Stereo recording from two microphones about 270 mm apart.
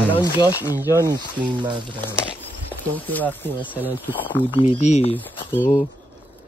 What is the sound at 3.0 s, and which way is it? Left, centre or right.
Speech, centre.